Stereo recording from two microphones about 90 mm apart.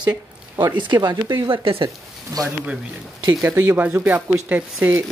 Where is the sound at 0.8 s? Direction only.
60° right (ahead or behind); by 1.9 s 75° right (ahead or behind).